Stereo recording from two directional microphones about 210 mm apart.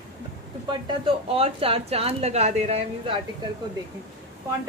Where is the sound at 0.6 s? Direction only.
25° right (ahead or behind).